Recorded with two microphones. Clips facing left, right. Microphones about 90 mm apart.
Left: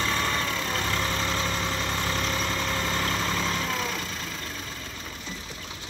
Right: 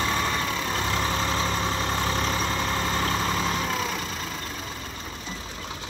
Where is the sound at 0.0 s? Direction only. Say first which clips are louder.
Right 1 dB; 15° right (ahead or behind).